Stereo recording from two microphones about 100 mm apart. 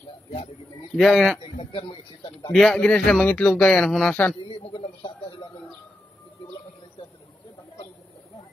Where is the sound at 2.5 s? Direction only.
5° left (ahead or behind).